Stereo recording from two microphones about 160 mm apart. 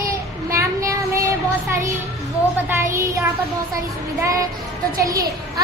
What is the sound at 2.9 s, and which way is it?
Speech, 20° right (ahead or behind).